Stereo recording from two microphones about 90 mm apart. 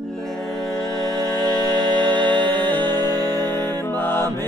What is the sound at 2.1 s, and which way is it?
Music, 15° left (ahead or behind).